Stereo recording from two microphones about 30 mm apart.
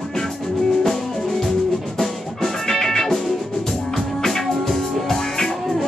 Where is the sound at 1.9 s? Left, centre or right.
Centre.